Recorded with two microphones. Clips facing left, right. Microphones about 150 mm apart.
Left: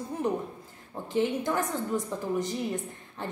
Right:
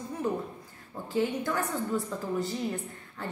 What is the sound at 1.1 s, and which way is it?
A woman's voice, 20° left (ahead or behind).